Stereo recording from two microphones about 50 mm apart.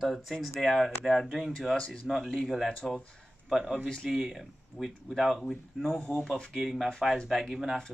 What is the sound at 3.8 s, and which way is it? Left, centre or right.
Speech, centre.